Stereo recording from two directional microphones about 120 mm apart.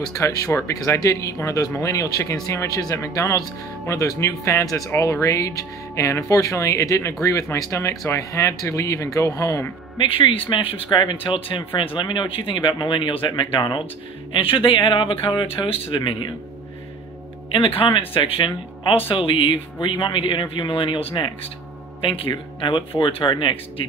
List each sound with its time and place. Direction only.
0.1 s speech: 25° left (ahead or behind)
9.9 s speech: 45° left (ahead or behind)
17.5 s speech: 50° left (ahead or behind)